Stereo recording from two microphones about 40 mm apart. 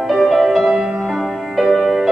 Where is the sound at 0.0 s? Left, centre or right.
Centre.